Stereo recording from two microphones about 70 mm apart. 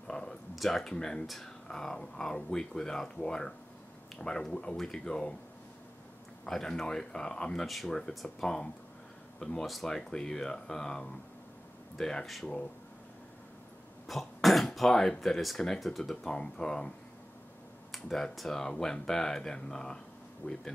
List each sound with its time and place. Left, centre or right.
0.1 s speech: centre
6.4 s speech: centre
14.0 s speech: centre
17.9 s speech: centre
20.4 s speech: left